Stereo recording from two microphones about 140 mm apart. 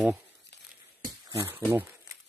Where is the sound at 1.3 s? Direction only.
20° right (ahead or behind).